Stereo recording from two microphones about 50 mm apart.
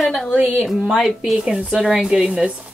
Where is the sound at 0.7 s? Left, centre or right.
Centre.